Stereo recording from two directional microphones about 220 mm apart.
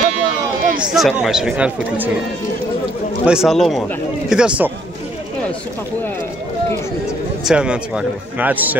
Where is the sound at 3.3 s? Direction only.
Centre (ahead or behind).